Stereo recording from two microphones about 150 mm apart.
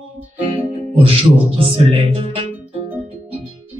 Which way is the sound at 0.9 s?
40° right (ahead or behind).